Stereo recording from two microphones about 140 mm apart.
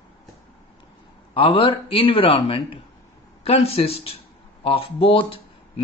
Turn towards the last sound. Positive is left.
turn(degrees=40)  # may be behind; listen again after turning